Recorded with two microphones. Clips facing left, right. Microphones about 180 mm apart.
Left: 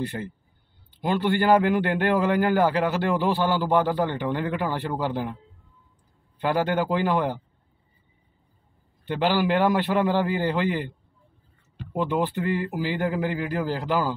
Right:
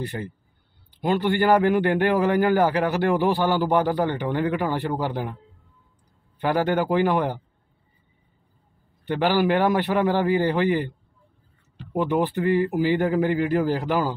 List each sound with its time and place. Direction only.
1.0 s a man's voice: 20° right (ahead or behind)
6.4 s a man's voice: 15° right (ahead or behind)
9.2 s a man's voice: 15° right (ahead or behind)
12.0 s a man's voice: 15° right (ahead or behind)